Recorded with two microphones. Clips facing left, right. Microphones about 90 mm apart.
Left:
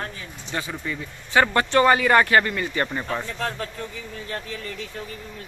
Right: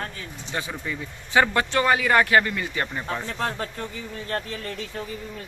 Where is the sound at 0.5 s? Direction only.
10° right (ahead or behind).